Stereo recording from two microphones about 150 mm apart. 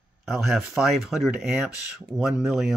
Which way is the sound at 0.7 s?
Centre (ahead or behind).